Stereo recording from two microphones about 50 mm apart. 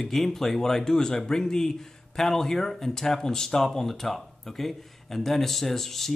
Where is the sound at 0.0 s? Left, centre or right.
Centre.